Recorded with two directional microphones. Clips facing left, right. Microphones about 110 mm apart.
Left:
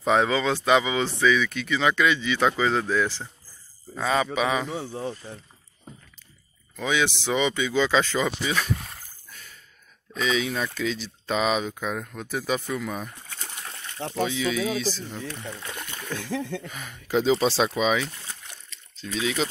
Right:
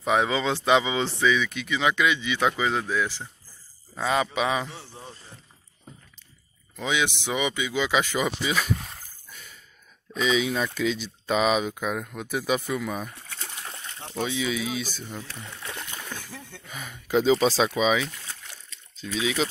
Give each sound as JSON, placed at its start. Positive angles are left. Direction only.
{"t": 0.0, "sound": "speech", "side_deg": -10}
{"t": 0.3, "sound": "a man's voice", "side_deg": -25}
{"t": 5.0, "sound": "speech", "side_deg": 90}
{"t": 6.8, "sound": "speech", "side_deg": -15}
{"t": 15.6, "sound": "rowboat", "side_deg": 0}
{"t": 16.2, "sound": "speech", "side_deg": 90}
{"t": 16.6, "sound": "speech", "side_deg": 0}